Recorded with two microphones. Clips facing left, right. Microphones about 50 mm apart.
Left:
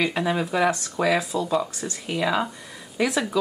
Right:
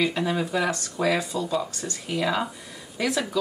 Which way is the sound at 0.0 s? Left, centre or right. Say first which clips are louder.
Left 1 dB; centre.